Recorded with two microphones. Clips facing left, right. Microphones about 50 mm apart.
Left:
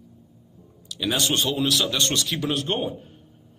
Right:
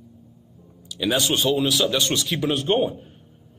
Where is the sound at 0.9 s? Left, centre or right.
Centre.